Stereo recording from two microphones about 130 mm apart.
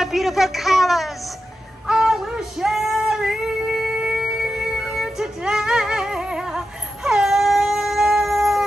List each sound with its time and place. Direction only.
0.0 s speech: centre (ahead or behind)
1.9 s female singing: 5° right (ahead or behind)